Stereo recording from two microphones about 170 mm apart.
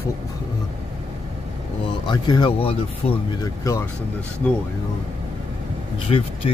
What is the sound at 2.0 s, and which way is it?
Speech, 25° left (ahead or behind).